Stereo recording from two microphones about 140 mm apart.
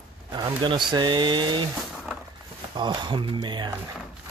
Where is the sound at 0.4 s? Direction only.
35° right (ahead or behind).